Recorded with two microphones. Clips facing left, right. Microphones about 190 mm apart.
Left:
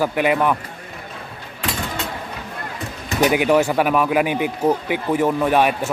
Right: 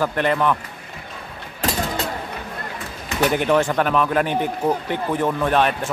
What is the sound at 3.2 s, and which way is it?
Speech, 10° left (ahead or behind).